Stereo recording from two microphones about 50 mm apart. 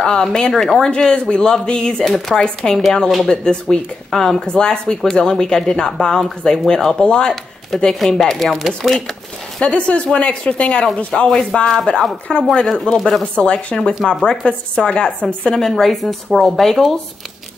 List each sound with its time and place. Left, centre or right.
0.0 s speech: centre
7.9 s speech: centre
9.6 s speech: left
11.5 s speech: centre
15.7 s speech: centre